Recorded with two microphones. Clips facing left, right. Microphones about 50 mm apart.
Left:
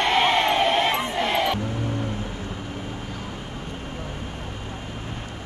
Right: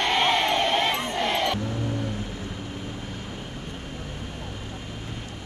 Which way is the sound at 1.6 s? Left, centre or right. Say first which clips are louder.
Left 1 dB; left.